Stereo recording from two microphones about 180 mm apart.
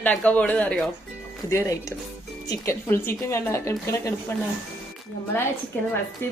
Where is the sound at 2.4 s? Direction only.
15° left (ahead or behind).